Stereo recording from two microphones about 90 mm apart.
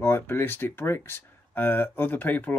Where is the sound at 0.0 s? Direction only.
25° left (ahead or behind).